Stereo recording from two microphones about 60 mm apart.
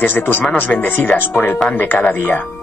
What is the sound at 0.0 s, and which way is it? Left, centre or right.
Speech, left.